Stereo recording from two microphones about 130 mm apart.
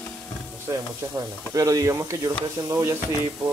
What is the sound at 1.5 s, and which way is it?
Speech, 25° right (ahead or behind).